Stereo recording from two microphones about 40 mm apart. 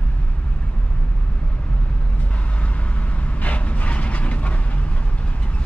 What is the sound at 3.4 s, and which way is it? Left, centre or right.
Vehicle, left.